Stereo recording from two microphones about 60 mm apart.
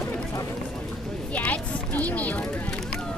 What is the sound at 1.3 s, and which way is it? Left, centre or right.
Speech, left.